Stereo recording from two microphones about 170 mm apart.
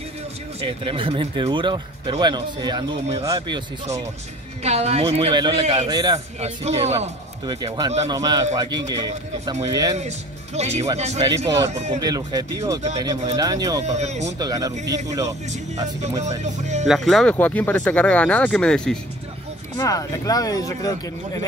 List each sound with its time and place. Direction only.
0.6 s speech: 30° right (ahead or behind)
4.6 s a man's voice: 40° right (ahead or behind)
6.1 s a man's voice: 40° right (ahead or behind)
7.4 s speech: 25° right (ahead or behind)
9.9 s a man's voice: 40° right (ahead or behind)
11.2 s speech: 20° right (ahead or behind)
11.7 s a man's voice: 40° right (ahead or behind)
12.0 s speech: 25° right (ahead or behind)
13.8 s a man's voice: 40° right (ahead or behind)
14.4 s speech: 20° right (ahead or behind)
16.8 s speech: centre (ahead or behind)
19.8 s speech: 20° left (ahead or behind)